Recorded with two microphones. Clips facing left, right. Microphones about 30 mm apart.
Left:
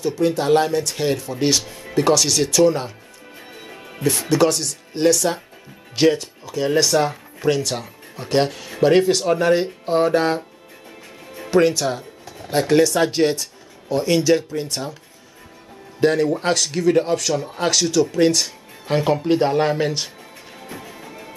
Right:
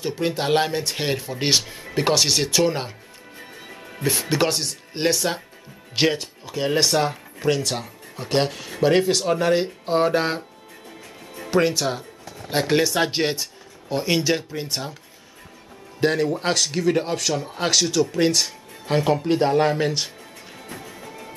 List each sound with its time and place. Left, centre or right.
0.0 s speech: right
3.3 s music: centre
4.3 s speech: right; by 10.4 s centre
10.9 s music: centre
11.5 s speech: centre
16.0 s speech: centre
20.5 s music: centre